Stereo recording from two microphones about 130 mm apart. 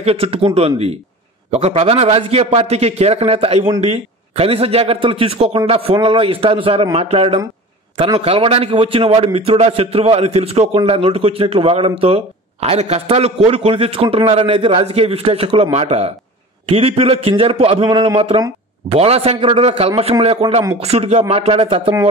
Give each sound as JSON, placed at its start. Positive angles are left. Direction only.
{"t": 0.0, "sound": "speech", "side_deg": -50}
{"t": 16.6, "sound": "speech", "side_deg": -45}
{"t": 17.8, "sound": "speech", "side_deg": -35}